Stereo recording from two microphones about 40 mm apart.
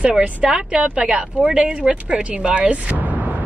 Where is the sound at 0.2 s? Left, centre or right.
Right.